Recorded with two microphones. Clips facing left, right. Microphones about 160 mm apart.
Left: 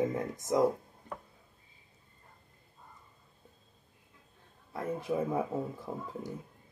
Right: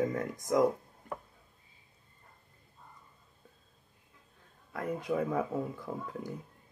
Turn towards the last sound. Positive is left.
turn(degrees=25)  # may be behind; listen again after turning